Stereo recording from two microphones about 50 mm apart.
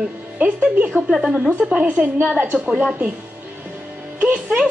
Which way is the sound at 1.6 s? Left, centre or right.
Right.